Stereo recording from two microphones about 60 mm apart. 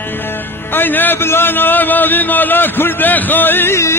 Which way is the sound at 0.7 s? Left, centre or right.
Left.